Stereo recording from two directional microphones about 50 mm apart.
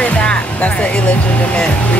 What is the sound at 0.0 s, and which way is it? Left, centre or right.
Music, left.